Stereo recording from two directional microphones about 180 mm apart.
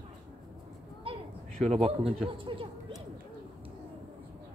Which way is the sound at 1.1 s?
30° right (ahead or behind).